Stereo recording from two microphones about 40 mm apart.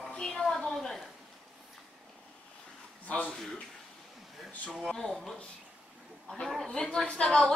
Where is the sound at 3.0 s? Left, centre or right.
Left.